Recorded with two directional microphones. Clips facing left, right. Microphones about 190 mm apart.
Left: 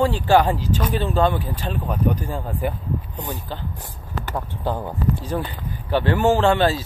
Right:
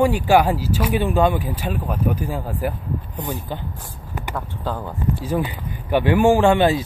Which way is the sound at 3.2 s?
15° right (ahead or behind).